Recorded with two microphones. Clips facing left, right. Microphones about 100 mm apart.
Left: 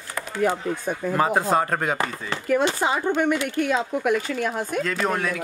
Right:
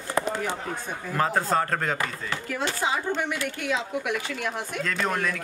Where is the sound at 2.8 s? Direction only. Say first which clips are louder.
Left 5 dB; 50° left (ahead or behind).